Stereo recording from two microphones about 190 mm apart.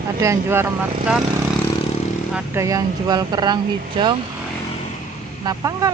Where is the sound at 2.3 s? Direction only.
15° right (ahead or behind).